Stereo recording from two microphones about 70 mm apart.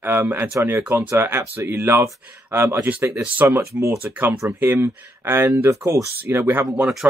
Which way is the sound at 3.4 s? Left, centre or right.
Right.